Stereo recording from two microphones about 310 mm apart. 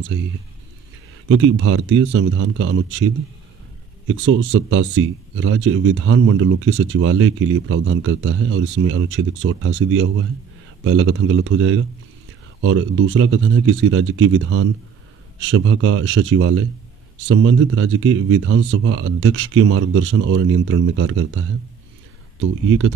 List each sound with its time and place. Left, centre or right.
0.1 s speech: right
1.3 s speech: right
4.1 s speech: right